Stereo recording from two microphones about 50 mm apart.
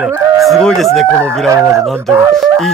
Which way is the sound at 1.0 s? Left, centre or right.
Right.